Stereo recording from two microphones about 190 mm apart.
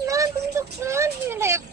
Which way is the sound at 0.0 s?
15° right (ahead or behind).